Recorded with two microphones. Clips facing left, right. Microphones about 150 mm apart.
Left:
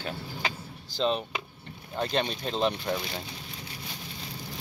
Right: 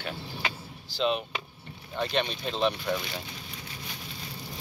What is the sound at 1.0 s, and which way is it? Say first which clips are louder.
Speech: even; 35° left (ahead or behind).